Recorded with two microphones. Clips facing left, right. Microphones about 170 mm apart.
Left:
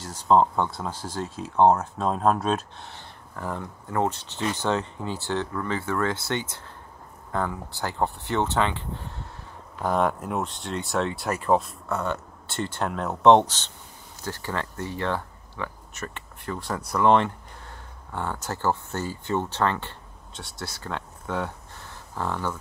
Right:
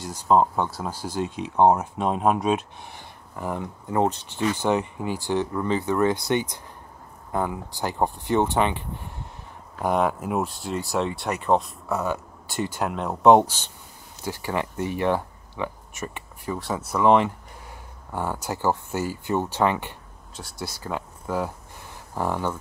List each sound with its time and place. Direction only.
0.0 s speech: 10° right (ahead or behind)
9.9 s speech: 5° right (ahead or behind)
16.5 s speech: centre (ahead or behind)
20.3 s speech: centre (ahead or behind)